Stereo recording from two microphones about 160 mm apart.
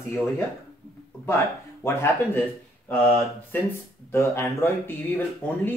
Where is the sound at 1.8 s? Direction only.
15° left (ahead or behind).